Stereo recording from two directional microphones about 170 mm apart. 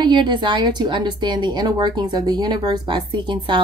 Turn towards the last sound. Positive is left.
turn(degrees=-25)  # may be behind; listen again after turning